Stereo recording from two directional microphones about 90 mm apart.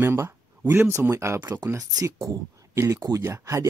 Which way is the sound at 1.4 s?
50° right (ahead or behind).